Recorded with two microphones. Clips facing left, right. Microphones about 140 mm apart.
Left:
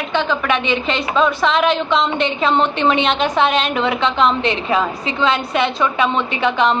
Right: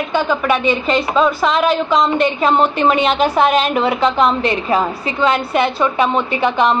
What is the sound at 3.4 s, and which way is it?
A woman's voice, 40° right (ahead or behind).